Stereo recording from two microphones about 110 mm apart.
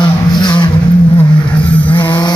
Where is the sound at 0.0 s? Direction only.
45° left (ahead or behind).